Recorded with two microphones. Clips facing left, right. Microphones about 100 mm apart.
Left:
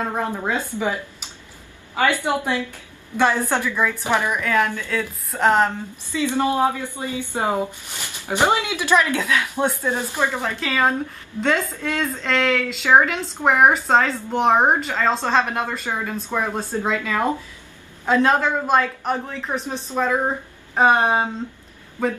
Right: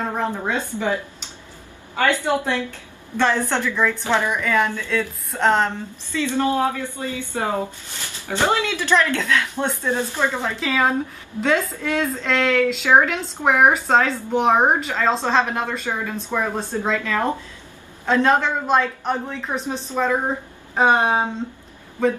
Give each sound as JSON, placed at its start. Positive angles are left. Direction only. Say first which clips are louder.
{"t": 0.1, "sound": "speech", "louder": "even", "side_deg": 5}
{"t": 2.2, "sound": "speech", "louder": "right 1 dB", "side_deg": 15}
{"t": 4.3, "sound": "a woman's voice", "louder": "even", "side_deg": 0}
{"t": 10.6, "sound": "a woman's voice", "louder": "right 1 dB", "side_deg": 0}